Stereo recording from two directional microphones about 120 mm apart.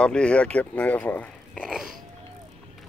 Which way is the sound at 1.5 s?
5° right (ahead or behind).